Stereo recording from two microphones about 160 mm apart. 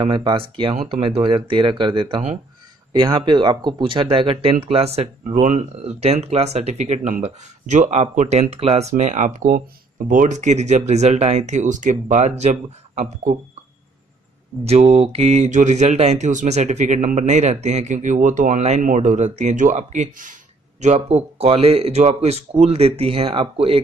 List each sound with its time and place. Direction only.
0.0 s speech: 30° right (ahead or behind); by 13.4 s 55° right (ahead or behind)
14.6 s speech: 40° right (ahead or behind)